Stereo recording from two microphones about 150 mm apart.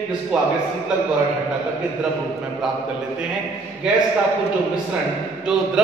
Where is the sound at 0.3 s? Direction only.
5° right (ahead or behind).